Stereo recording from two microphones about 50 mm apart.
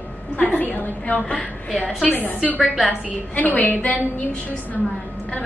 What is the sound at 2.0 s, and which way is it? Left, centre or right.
A woman's voice, left.